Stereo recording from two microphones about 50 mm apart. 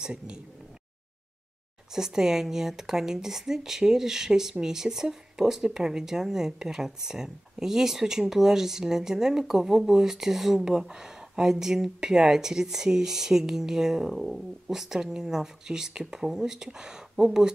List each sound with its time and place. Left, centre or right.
0.0 s speech: centre
2.0 s speech: centre